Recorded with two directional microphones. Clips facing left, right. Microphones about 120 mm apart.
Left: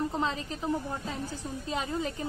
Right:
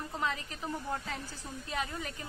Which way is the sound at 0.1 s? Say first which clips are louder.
Left 4 dB; 25° left (ahead or behind).